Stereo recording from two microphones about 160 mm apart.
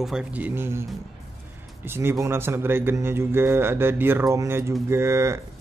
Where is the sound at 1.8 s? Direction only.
15° right (ahead or behind).